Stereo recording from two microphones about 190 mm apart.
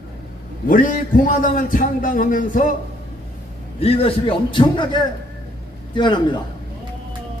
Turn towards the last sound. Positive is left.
turn(degrees=25)  # may be behind; listen again after turning